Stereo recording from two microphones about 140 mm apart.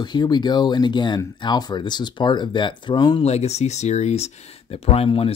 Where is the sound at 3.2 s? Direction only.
50° left (ahead or behind).